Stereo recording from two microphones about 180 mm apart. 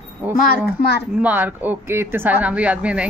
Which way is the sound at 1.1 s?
10° right (ahead or behind).